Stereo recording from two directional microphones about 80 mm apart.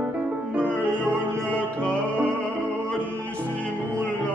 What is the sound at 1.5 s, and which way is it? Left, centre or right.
Music, centre.